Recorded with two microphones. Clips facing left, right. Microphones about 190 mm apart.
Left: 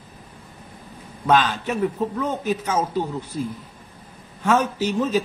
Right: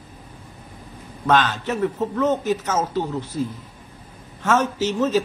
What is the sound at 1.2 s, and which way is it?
A man's voice, 10° left (ahead or behind).